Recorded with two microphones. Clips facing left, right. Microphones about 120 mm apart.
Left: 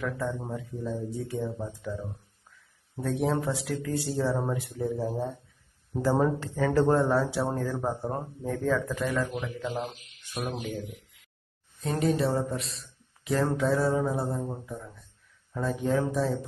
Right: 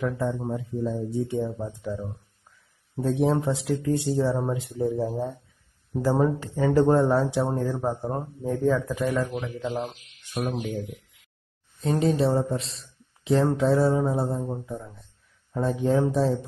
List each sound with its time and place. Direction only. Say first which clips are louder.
0.0 s speech: right 5 dB; 25° right (ahead or behind)
3.0 s speech: right 4 dB; 25° right (ahead or behind)
15.6 s speech: right 4 dB; 30° right (ahead or behind)